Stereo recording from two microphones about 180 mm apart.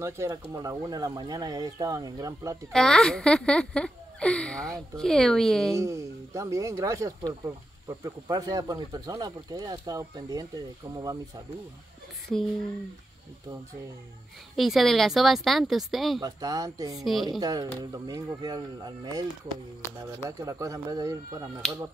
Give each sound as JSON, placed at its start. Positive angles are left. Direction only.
{"t": 0.0, "sound": "speech", "side_deg": -15}
{"t": 2.7, "sound": "a child's voice", "side_deg": 5}
{"t": 5.8, "sound": "speech", "side_deg": -15}
{"t": 14.5, "sound": "a child's voice", "side_deg": 0}
{"t": 16.2, "sound": "speech", "side_deg": -20}
{"t": 17.0, "sound": "a child's voice", "side_deg": 0}
{"t": 17.4, "sound": "speech", "side_deg": -20}